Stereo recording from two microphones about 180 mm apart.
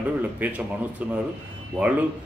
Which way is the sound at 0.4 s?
10° right (ahead or behind).